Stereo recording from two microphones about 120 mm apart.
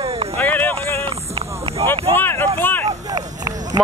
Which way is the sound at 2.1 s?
15° left (ahead or behind).